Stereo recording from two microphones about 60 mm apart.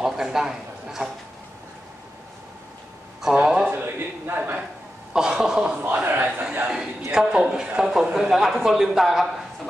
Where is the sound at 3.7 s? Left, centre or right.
Right.